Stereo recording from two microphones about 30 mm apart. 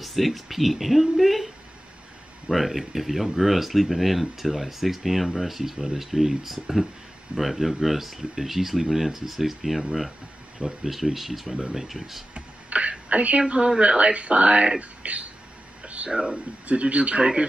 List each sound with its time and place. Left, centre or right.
0.0 s a woman's voice: centre
10.9 s speech: centre
11.6 s speech: centre
12.4 s a sound: right
13.1 s speech: right
15.8 s a sound: right
16.1 s speech: centre
16.6 s speech: right